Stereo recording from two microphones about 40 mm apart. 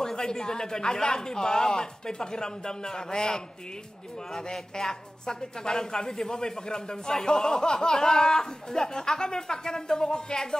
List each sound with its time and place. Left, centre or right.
0.0 s a man's voice: centre